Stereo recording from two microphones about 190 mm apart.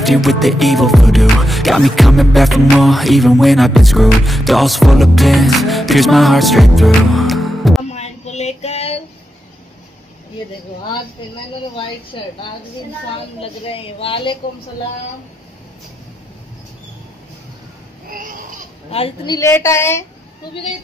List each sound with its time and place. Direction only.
0.0 s music: centre (ahead or behind)
7.9 s a sound: 35° left (ahead or behind)
12.1 s a woman's voice: 25° left (ahead or behind)
13.4 s a woman's voice: 30° left (ahead or behind)
18.1 s babbling: 45° right (ahead or behind)
18.9 s a woman's voice: 30° left (ahead or behind); by 20.1 s 15° left (ahead or behind)